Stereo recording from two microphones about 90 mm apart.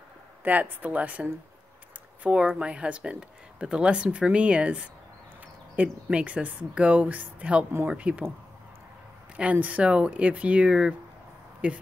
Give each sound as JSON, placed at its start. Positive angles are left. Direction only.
{"t": 0.4, "sound": "speech", "side_deg": -20}
{"t": 9.4, "sound": "speech", "side_deg": -15}